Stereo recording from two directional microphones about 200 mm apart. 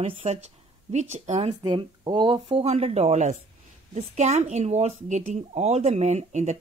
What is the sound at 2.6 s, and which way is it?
Speech, 30° right (ahead or behind).